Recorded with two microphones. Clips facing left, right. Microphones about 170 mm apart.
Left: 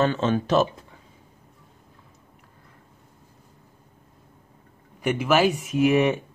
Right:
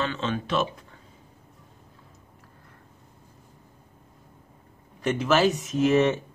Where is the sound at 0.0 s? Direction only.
45° left (ahead or behind).